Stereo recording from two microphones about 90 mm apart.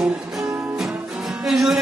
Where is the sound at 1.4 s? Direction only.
5° right (ahead or behind).